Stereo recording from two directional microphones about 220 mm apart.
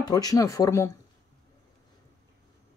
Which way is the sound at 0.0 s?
15° left (ahead or behind).